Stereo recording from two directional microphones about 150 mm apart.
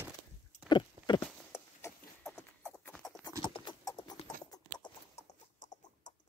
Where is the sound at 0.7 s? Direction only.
30° left (ahead or behind).